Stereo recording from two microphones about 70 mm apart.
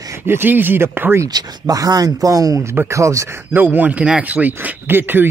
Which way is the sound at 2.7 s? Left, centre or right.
Right.